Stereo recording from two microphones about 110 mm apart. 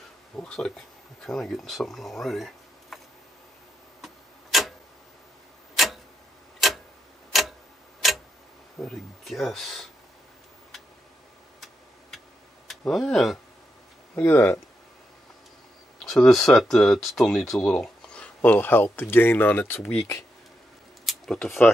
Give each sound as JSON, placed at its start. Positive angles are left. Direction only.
{"t": 0.4, "sound": "speech", "side_deg": 5}
{"t": 4.0, "sound": "clock", "side_deg": 0}
{"t": 6.6, "sound": "tick-tock", "side_deg": 0}
{"t": 8.7, "sound": "speech", "side_deg": 5}
{"t": 12.6, "sound": "speech", "side_deg": 5}
{"t": 14.1, "sound": "speech", "side_deg": 15}
{"t": 16.0, "sound": "speech", "side_deg": 5}
{"t": 21.0, "sound": "a sound", "side_deg": 5}